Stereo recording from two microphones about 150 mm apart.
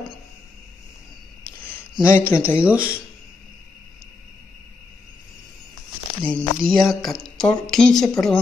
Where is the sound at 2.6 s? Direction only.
10° right (ahead or behind).